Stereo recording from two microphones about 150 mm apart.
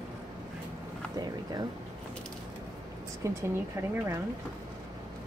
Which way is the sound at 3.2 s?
20° right (ahead or behind).